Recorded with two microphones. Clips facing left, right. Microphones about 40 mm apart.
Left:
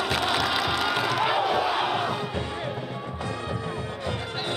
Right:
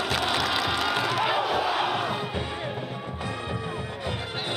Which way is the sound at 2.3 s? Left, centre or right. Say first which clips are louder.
Left 1 dB; right.